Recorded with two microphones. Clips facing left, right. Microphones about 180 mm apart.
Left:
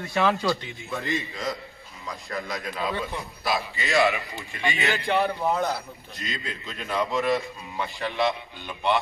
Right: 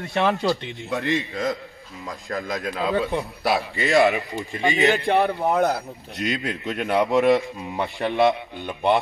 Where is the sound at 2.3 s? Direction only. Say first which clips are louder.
Right 5 dB; 45° right (ahead or behind).